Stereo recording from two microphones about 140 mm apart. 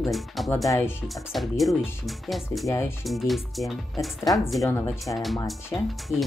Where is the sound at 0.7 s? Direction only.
15° left (ahead or behind).